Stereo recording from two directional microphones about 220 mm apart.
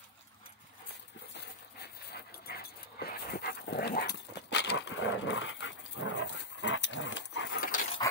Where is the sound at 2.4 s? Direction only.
45° left (ahead or behind).